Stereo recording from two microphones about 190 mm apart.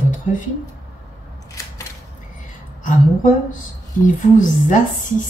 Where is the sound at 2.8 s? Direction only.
45° left (ahead or behind).